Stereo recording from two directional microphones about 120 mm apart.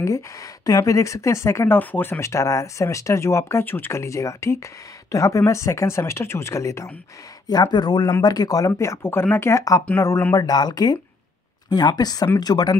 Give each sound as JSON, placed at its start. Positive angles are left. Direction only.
{"t": 0.0, "sound": "speech", "side_deg": 25}
{"t": 7.4, "sound": "speech", "side_deg": 35}